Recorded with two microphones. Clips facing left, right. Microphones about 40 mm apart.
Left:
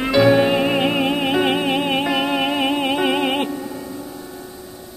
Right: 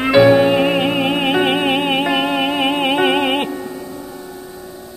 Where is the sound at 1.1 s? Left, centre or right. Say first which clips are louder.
Right 2 dB; centre.